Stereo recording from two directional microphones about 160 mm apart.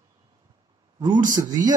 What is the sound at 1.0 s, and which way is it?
Speech, 25° right (ahead or behind).